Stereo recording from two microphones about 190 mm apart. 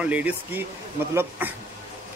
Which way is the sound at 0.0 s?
10° right (ahead or behind).